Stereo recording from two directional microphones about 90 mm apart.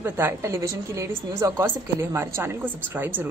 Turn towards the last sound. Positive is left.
turn(degrees=-20)  # may be behind; listen again after turning